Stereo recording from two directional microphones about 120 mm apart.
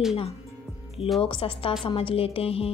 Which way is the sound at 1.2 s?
45° left (ahead or behind).